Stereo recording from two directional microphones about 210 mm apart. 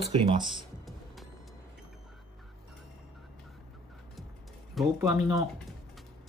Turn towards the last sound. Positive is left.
turn(degrees=-15)  # may be behind; listen again after turning